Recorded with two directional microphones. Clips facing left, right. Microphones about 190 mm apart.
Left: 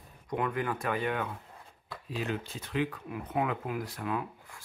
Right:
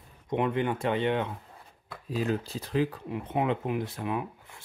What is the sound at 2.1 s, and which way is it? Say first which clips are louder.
Speech: right 5 dB; 40° right (ahead or behind).